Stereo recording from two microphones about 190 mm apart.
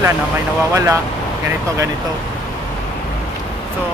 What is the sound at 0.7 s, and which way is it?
Speech, 15° right (ahead or behind).